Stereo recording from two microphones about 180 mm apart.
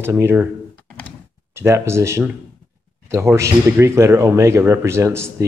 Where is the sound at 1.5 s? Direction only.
15° right (ahead or behind).